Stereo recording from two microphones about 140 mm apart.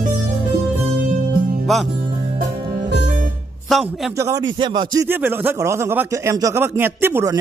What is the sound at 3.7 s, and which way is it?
Speech, centre (ahead or behind).